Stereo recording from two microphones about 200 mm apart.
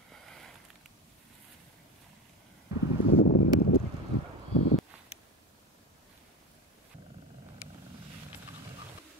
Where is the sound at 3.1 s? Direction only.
65° left (ahead or behind).